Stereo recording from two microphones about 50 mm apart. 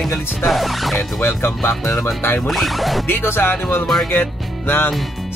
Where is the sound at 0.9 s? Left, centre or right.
Left.